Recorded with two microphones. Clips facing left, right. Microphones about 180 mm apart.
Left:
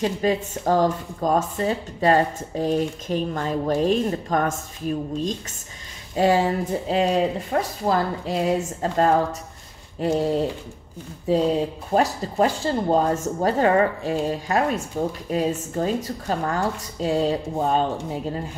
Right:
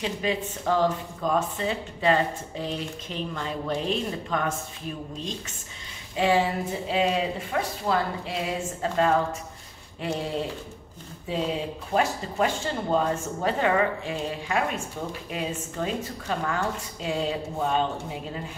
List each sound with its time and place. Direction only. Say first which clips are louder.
0.0 s a woman's voice: left 6 dB; 45° left (ahead or behind)